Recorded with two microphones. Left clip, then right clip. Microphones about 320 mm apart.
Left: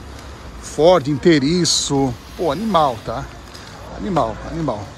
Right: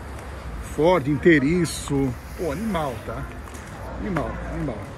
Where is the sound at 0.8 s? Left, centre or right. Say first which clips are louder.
Left 6 dB; centre.